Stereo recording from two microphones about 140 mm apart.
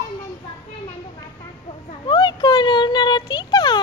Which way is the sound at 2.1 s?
30° left (ahead or behind).